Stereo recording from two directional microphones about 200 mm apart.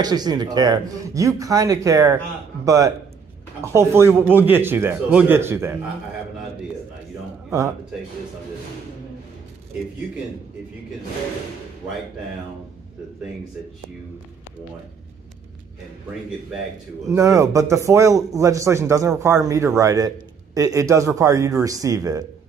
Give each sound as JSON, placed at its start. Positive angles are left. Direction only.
{"t": 0.0, "sound": "speech", "side_deg": -20}
{"t": 17.1, "sound": "speech", "side_deg": -15}